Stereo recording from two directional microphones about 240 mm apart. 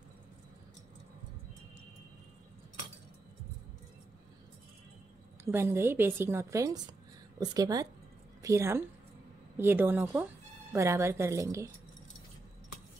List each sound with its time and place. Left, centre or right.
5.4 s a woman's voice: centre